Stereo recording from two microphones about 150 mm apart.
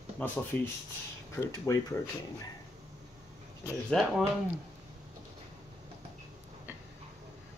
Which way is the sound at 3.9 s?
5° left (ahead or behind).